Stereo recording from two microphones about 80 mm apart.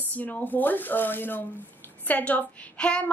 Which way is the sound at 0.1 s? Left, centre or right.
Left.